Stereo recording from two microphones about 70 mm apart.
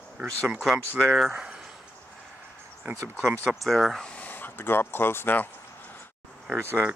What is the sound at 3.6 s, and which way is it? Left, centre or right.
Speech, centre.